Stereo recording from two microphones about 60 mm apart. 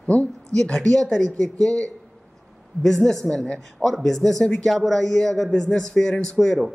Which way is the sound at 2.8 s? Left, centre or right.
Centre.